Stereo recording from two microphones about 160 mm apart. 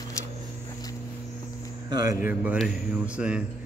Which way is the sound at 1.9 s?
25° right (ahead or behind).